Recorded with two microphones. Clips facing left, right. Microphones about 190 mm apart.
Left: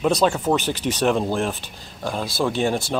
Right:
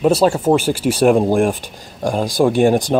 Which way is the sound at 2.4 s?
45° right (ahead or behind).